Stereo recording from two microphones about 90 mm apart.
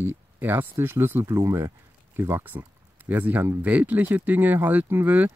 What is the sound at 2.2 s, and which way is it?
Speech, 25° right (ahead or behind).